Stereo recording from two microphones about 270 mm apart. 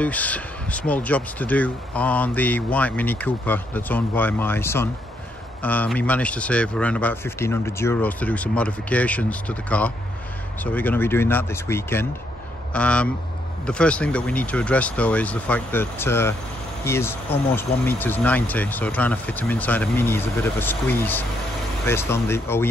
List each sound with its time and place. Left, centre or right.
0.0 s speech: centre